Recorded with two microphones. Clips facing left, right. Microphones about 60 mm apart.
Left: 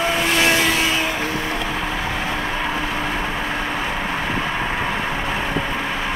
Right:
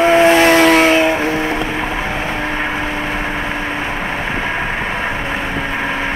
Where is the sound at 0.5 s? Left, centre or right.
Right.